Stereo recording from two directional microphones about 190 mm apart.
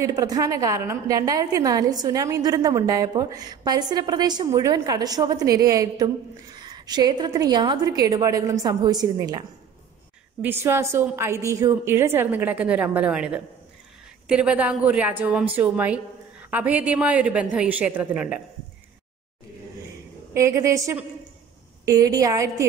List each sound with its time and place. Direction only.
0.0 s a woman's voice: 20° right (ahead or behind)
10.4 s a woman's voice: 10° right (ahead or behind)
20.3 s a woman's voice: 15° right (ahead or behind)